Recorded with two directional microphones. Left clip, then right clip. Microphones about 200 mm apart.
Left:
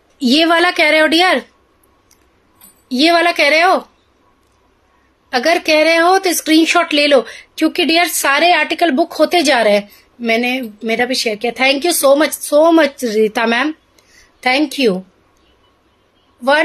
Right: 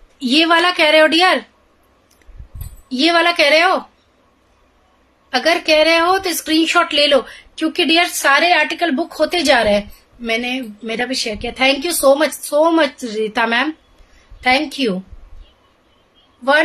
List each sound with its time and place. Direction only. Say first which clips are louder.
0.2 s a woman's voice: left 1 dB; 30° left (ahead or behind)
2.9 s a woman's voice: left 2 dB; 35° left (ahead or behind)
5.3 s a woman's voice: left 1 dB; 30° left (ahead or behind)